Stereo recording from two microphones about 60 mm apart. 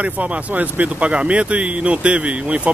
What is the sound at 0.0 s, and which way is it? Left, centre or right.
Speech, right.